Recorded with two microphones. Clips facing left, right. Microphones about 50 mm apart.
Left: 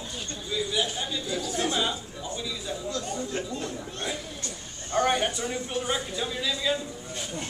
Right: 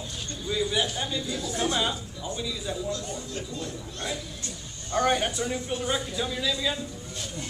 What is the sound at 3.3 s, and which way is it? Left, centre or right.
Chatter, left.